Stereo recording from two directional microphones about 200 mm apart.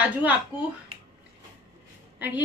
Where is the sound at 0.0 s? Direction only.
10° right (ahead or behind).